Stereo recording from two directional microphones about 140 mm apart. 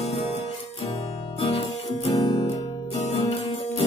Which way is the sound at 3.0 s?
50° left (ahead or behind).